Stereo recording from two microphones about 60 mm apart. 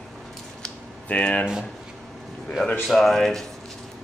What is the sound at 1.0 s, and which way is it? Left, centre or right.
Speech, left.